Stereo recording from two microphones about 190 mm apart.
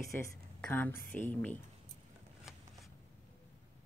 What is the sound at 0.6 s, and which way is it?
Speech, 10° left (ahead or behind).